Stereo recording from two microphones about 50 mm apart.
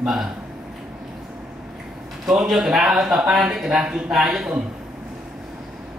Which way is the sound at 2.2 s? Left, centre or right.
Centre.